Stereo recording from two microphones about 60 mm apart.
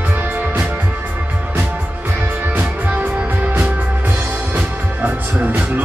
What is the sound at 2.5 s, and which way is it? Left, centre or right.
Music, right.